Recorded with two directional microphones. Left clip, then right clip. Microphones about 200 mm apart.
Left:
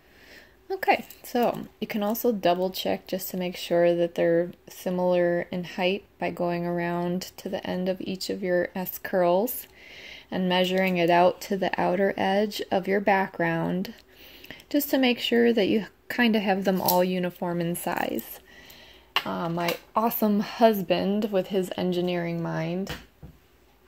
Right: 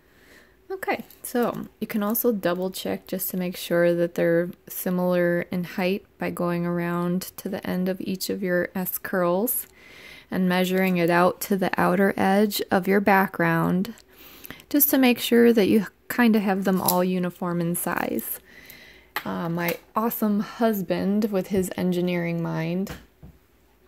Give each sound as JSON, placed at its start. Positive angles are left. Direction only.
{"t": 0.7, "sound": "speech", "side_deg": -25}